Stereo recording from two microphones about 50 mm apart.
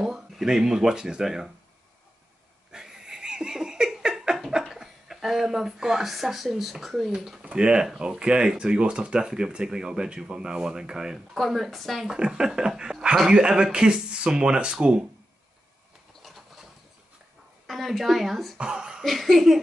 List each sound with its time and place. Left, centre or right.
0.0 s speech: centre
2.7 s laughter: centre
4.1 s a sound: centre
4.6 s speech: centre
7.4 s speech: centre
11.3 s speech: centre
12.1 s speech: centre
16.2 s a sound: centre
17.6 s speech: centre
18.6 s speech: centre
19.0 s speech: centre